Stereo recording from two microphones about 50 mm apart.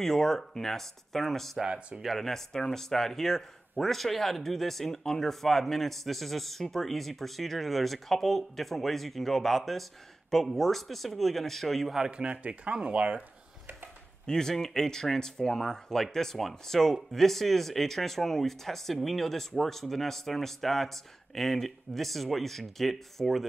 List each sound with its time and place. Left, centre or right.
0.0 s speech: centre
1.6 s speech: centre
2.0 s speech: centre
12.1 s speech: right
14.2 s speech: centre